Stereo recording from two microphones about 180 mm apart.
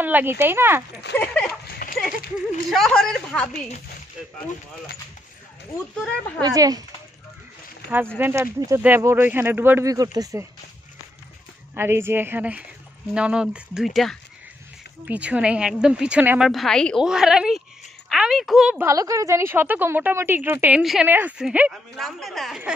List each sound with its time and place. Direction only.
0.0 s speech: 10° right (ahead or behind)
1.1 s a woman's voice: 5° left (ahead or behind)
1.7 s a sound: 50° left (ahead or behind)
2.0 s speech: centre (ahead or behind)
6.4 s speech: 20° right (ahead or behind)
8.2 s speech: 15° right (ahead or behind)
11.7 s a woman's voice: 15° right (ahead or behind)
18.8 s a woman's voice: 15° right (ahead or behind); by 22.6 s centre (ahead or behind)